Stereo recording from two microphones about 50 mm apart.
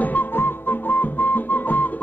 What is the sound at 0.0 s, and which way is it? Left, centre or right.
Music, left.